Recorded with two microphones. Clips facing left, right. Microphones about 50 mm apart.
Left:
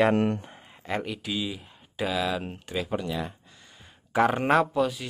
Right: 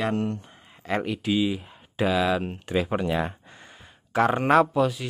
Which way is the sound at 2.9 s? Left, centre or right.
Right.